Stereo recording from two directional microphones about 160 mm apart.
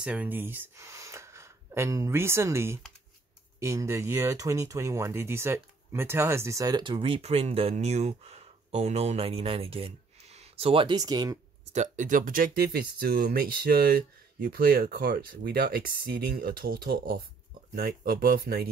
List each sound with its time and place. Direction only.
0.0 s speech: 10° right (ahead or behind); by 11.0 s 35° right (ahead or behind)
11.0 s speech: 25° right (ahead or behind)
11.7 s speech: 50° right (ahead or behind); by 18.7 s 65° right (ahead or behind)